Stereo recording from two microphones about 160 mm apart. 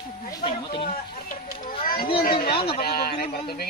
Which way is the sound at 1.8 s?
65° left (ahead or behind).